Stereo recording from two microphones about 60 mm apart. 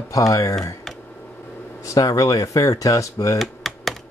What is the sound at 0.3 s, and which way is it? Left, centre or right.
Speech, left.